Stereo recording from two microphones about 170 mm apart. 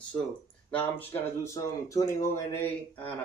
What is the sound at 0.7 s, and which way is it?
Speech, 10° left (ahead or behind).